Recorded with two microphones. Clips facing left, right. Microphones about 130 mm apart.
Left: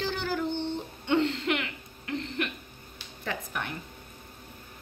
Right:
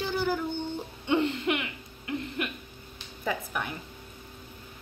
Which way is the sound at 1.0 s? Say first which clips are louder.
Even; 10° right (ahead or behind).